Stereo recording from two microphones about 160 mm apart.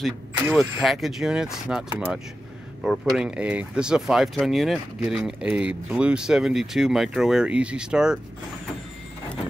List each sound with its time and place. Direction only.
0.6 s speech: centre (ahead or behind)